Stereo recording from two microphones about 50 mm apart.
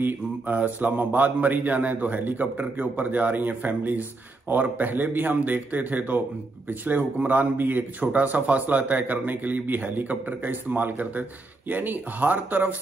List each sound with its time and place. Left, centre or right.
0.5 s a man's voice: right
7.2 s a man's voice: right